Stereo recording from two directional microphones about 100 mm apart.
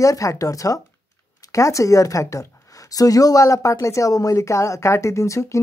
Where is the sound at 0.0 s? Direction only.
35° left (ahead or behind).